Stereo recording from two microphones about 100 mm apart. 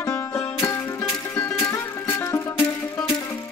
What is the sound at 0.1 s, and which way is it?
Music, 30° left (ahead or behind).